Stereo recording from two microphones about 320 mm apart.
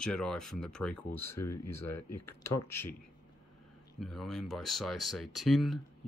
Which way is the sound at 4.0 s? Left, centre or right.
Centre.